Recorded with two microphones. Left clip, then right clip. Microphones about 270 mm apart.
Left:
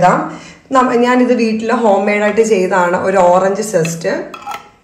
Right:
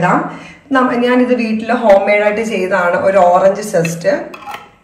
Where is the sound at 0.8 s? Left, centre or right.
Left.